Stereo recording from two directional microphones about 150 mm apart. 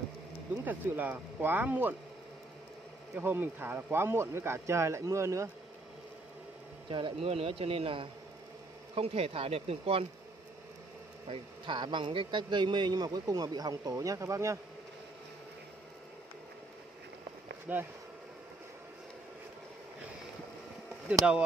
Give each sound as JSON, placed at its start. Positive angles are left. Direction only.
{"t": 0.7, "sound": "speech", "side_deg": -10}
{"t": 3.2, "sound": "speech", "side_deg": -15}
{"t": 6.9, "sound": "speech", "side_deg": -35}
{"t": 11.2, "sound": "a man's voice", "side_deg": -35}
{"t": 17.7, "sound": "speech", "side_deg": -10}